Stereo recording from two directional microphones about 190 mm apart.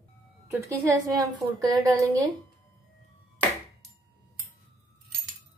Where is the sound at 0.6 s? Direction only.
20° right (ahead or behind).